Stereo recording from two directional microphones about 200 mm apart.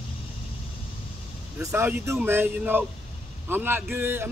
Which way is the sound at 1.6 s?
10° right (ahead or behind).